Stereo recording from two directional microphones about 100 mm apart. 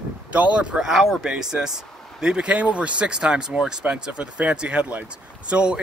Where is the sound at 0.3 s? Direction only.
15° right (ahead or behind).